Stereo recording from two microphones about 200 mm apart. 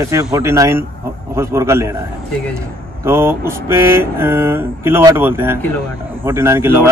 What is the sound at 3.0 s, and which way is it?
A man's voice, 10° right (ahead or behind).